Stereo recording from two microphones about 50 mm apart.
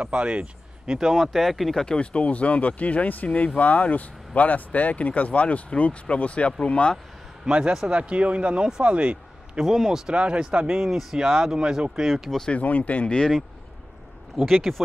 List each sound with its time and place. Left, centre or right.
0.0 s speech: right
1.1 s speech: centre
1.9 s speech: left
7.4 s speech: right
9.6 s speech: centre
10.8 s speech: centre
12.4 s speech: left
14.3 s speech: centre